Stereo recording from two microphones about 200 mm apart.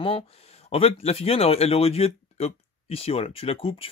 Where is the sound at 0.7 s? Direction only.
30° left (ahead or behind).